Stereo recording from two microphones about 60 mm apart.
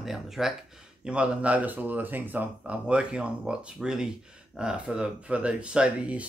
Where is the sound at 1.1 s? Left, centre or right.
Right.